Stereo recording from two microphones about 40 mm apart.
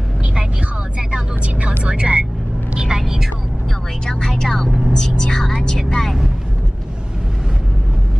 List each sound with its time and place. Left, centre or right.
0.9 s vehicle: right
1.9 s speech: right
2.7 s vehicle: right
3.0 s vehicle: centre
4.0 s music: centre
4.9 s speech: centre